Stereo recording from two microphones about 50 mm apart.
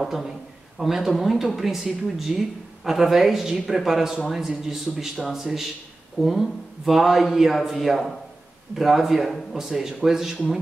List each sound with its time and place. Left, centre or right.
0.0 s speech: centre